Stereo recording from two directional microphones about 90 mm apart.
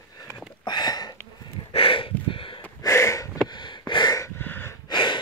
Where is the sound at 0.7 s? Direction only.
50° left (ahead or behind).